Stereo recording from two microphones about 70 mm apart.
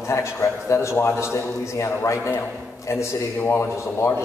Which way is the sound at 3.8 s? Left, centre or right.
Left.